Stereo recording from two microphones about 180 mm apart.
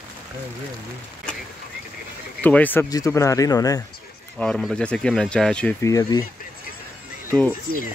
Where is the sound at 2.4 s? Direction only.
10° left (ahead or behind).